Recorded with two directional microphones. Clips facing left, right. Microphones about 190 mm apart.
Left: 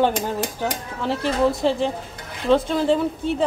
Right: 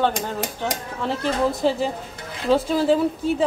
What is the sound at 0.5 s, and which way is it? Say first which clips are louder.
A woman's voice: left 1 dB; centre (ahead or behind).